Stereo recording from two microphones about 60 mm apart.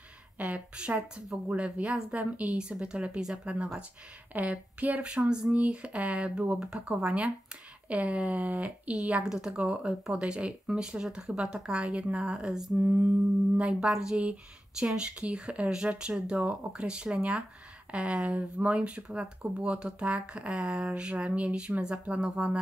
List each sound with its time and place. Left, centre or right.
0.4 s speech: right
12.8 s speech: right
13.6 s speech: centre